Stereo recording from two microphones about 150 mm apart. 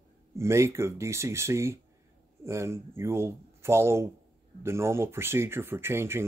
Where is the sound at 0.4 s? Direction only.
20° right (ahead or behind).